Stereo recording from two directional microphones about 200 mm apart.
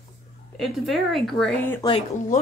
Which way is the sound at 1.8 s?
25° left (ahead or behind).